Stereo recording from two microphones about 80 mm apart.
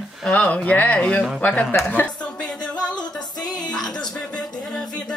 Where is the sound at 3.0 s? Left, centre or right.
Left.